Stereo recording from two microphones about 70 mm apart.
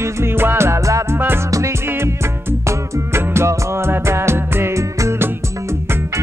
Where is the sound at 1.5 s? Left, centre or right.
Right.